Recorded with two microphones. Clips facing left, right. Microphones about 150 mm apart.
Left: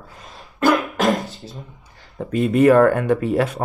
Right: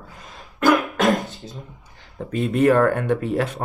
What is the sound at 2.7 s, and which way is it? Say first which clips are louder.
Speech: left 4 dB; 50° left (ahead or behind).